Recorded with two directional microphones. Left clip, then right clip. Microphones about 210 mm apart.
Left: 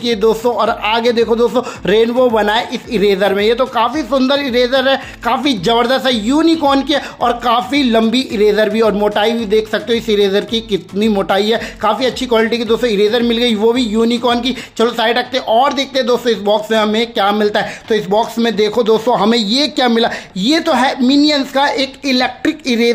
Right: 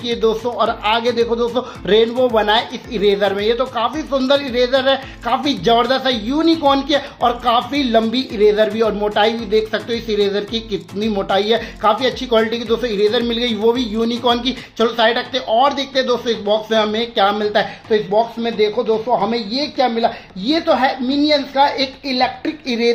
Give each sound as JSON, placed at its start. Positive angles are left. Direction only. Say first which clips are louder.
{"t": 0.0, "sound": "a man's voice", "louder": "left 4 dB", "side_deg": 20}